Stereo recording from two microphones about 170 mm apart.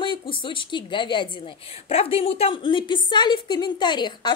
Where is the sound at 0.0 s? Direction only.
30° left (ahead or behind).